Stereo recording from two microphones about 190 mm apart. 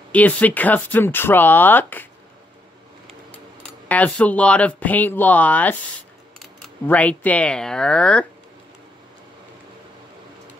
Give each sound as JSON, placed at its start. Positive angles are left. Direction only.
{"t": 0.1, "sound": "speech", "side_deg": 10}
{"t": 3.6, "sound": "speech", "side_deg": 5}
{"t": 6.9, "sound": "speech", "side_deg": 5}